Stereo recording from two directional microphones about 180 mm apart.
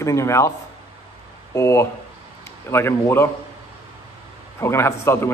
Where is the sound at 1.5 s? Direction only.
15° left (ahead or behind).